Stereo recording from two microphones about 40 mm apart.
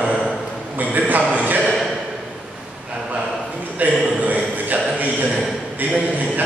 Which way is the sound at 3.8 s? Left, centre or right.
Right.